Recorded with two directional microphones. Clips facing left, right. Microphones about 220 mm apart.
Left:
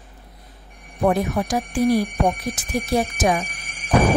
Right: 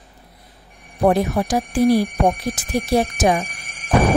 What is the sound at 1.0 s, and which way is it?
Speech, 35° right (ahead or behind).